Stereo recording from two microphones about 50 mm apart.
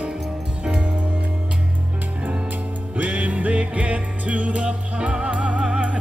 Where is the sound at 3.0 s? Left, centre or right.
Right.